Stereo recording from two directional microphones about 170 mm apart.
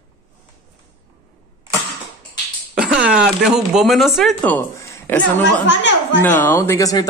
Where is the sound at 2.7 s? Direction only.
5° right (ahead or behind).